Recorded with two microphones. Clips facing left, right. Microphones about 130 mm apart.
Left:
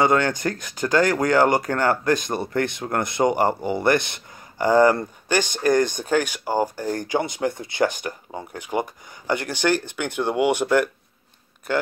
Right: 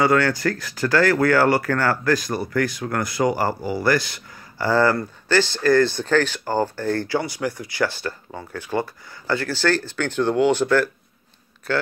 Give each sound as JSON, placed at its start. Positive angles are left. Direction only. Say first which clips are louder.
{"t": 0.0, "sound": "speech", "louder": "right 1 dB", "side_deg": 20}